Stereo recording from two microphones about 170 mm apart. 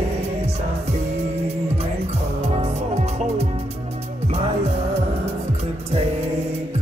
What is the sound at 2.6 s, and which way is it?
Music, 40° right (ahead or behind).